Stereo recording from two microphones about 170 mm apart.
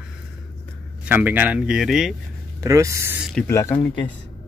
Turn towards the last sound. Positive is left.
turn(degrees=15)  # may be behind; listen again after turning